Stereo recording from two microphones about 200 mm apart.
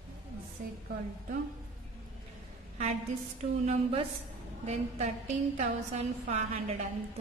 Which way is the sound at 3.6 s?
30° right (ahead or behind).